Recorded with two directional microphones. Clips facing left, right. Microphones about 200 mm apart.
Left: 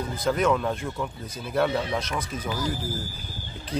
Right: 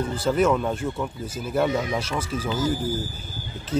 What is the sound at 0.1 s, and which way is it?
Speech, 10° right (ahead or behind).